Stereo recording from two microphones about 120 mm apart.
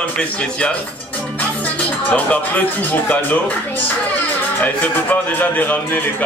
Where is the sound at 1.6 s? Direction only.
10° left (ahead or behind).